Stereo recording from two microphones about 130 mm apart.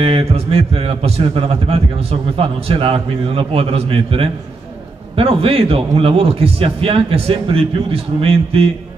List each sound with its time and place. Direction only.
0.0 s a man's voice: 50° right (ahead or behind)